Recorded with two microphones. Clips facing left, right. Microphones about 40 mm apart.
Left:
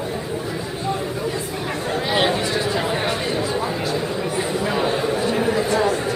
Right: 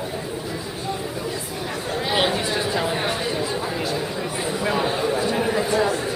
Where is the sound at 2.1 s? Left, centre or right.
Centre.